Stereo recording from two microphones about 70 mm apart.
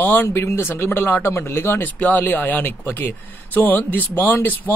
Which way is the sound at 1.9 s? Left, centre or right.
Left.